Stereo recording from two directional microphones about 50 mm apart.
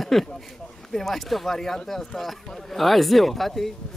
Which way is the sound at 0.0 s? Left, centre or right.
Centre.